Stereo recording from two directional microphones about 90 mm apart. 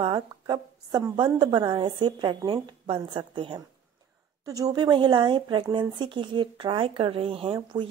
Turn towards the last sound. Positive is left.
turn(degrees=-90)